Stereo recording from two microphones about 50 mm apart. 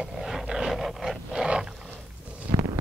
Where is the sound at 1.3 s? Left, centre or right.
Centre.